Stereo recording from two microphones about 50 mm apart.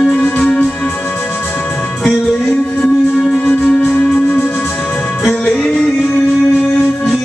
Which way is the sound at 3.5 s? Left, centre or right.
Left.